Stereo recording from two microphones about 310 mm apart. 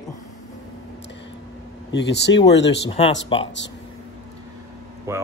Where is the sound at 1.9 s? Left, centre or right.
Left.